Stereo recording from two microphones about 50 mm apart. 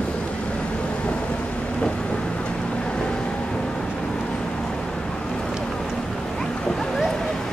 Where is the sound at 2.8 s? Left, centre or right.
Centre.